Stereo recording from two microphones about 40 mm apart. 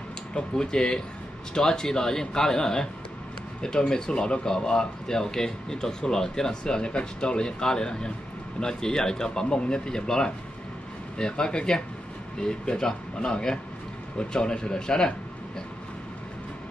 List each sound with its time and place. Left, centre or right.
0.3 s speech: left